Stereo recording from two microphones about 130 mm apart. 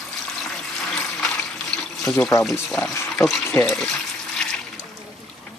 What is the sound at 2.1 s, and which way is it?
Speech, 25° left (ahead or behind).